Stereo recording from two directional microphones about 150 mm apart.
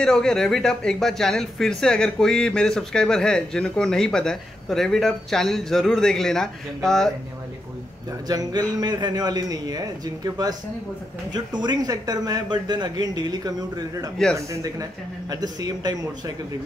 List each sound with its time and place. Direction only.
0.0 s speech: 5° left (ahead or behind)
8.3 s a man's voice: 25° right (ahead or behind)